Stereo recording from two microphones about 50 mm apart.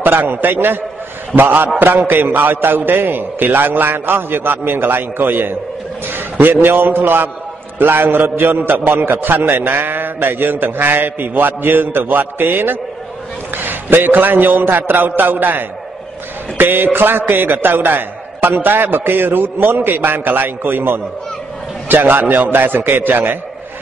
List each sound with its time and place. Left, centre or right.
0.0 s a man's voice: right